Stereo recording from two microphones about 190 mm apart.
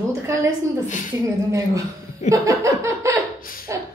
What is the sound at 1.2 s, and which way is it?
Speech, 15° right (ahead or behind).